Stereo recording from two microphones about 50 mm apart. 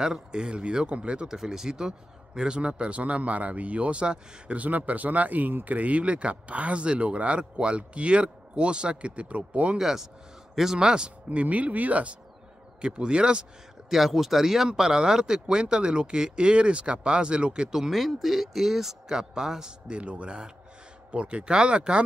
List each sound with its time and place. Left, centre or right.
0.0 s a man's voice: centre
1.4 s a man's voice: centre; by 5.8 s right
5.8 s a man's voice: right
9.8 s speech: centre
11.2 s a man's voice: right
13.9 s speech: centre
19.9 s a man's voice: right